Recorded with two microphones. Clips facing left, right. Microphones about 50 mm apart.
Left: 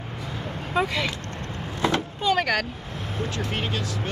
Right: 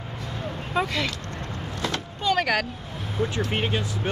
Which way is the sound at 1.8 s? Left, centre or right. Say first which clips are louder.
Left 6 dB; centre.